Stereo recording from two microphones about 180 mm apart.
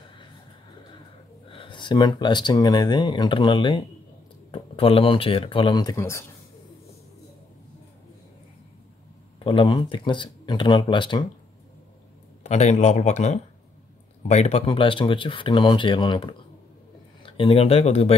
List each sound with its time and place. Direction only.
1.5 s speech: 30° left (ahead or behind)
9.4 s speech: 30° left (ahead or behind)
12.4 s speech: 40° left (ahead or behind)